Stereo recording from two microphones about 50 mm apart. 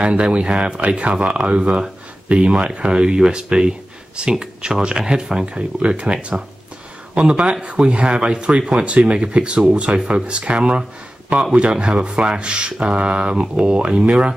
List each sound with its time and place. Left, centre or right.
0.0 s speech: right
7.2 s speech: right